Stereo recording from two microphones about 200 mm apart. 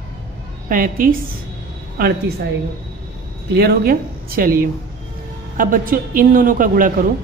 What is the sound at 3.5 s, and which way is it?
A man's voice, 50° right (ahead or behind).